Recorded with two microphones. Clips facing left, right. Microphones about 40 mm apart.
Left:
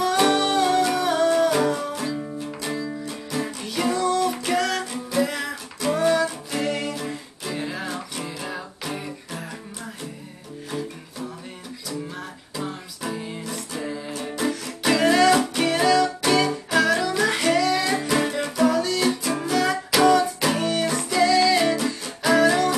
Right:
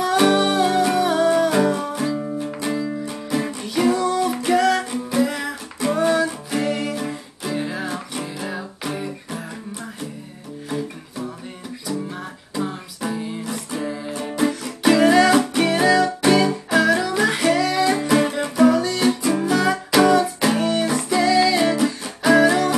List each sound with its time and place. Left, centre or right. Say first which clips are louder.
0.0 s music: right 3 dB; centre
3.6 s music: right 3 dB; centre
12.2 s music: right 5 dB; centre
13.5 s music: right 4 dB; centre
13.8 s music: right 3 dB; centre
14.2 s music: right 5 dB; centre
14.5 s music: right 4 dB; centre